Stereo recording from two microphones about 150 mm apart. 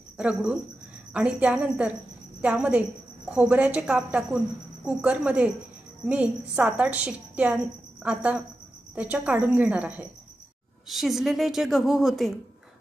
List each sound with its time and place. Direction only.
0.2 s a woman's voice: 5° right (ahead or behind)